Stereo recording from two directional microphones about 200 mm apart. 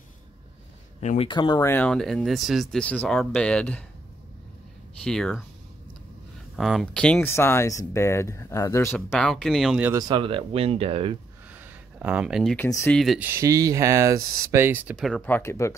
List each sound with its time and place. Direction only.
1.0 s speech: 30° left (ahead or behind)
1.7 s speech: 5° left (ahead or behind)
5.0 s speech: 5° left (ahead or behind)
6.5 s speech: centre (ahead or behind)
9.1 s speech: centre (ahead or behind)
9.9 s speech: 25° right (ahead or behind)
11.5 s a sound: 10° right (ahead or behind)
12.5 s speech: 15° left (ahead or behind)
12.9 s speech: centre (ahead or behind)
13.2 s speech: 15° right (ahead or behind)
15.0 s speech: centre (ahead or behind)